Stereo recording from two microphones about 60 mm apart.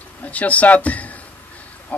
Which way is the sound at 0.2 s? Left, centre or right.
Left.